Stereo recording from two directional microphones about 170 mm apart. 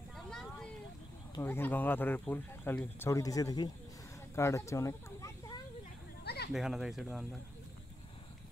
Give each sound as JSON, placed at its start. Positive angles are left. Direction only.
{"t": 0.1, "sound": "vehicle", "side_deg": 5}
{"t": 1.3, "sound": "speech", "side_deg": 15}
{"t": 6.2, "sound": "a sound", "side_deg": 70}
{"t": 6.5, "sound": "speech", "side_deg": 0}